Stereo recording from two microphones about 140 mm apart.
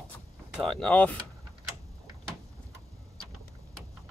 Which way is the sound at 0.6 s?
5° left (ahead or behind).